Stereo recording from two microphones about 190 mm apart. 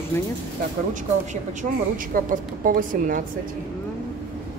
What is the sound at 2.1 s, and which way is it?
A woman's voice, 45° right (ahead or behind).